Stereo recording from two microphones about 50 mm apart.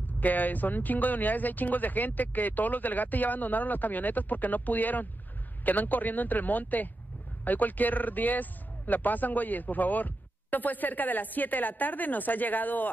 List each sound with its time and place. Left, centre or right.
0.2 s a man's voice: left